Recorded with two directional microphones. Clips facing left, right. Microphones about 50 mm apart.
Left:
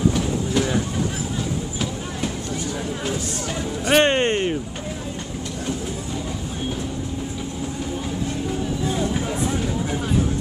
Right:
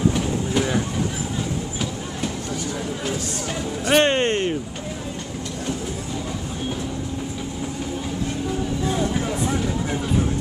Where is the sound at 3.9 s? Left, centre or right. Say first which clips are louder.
Left 1 dB; centre.